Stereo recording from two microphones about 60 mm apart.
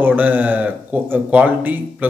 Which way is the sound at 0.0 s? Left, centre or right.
Right.